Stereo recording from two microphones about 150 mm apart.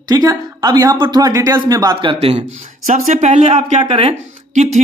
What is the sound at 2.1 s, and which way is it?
Speech, 40° right (ahead or behind).